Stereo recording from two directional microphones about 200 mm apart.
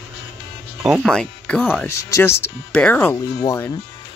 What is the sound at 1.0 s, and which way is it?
Speech, 5° left (ahead or behind).